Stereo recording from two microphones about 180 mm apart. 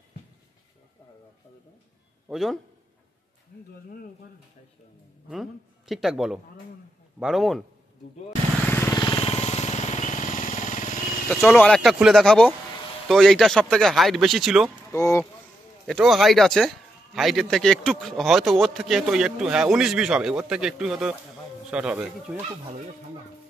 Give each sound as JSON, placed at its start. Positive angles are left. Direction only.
{"t": 2.2, "sound": "a man's voice", "side_deg": 0}
{"t": 5.3, "sound": "a man's voice", "side_deg": 0}
{"t": 8.6, "sound": "vehicle", "side_deg": 10}
{"t": 9.0, "sound": "vehicle", "side_deg": 30}
{"t": 11.4, "sound": "a man's voice", "side_deg": 5}
{"t": 14.9, "sound": "speech", "side_deg": 15}
{"t": 15.9, "sound": "a man's voice", "side_deg": 0}